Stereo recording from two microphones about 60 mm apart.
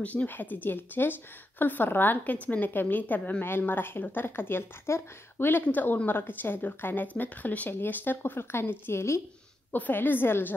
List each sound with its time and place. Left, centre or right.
0.0 s a woman's voice: left
9.7 s a woman's voice: left